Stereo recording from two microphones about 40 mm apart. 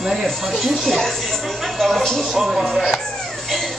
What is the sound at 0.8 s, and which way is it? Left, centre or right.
Speech, centre.